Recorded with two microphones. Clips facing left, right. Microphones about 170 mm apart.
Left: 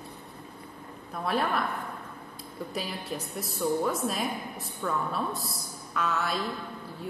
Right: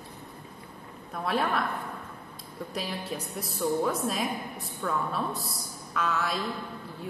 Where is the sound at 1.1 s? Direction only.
Centre (ahead or behind).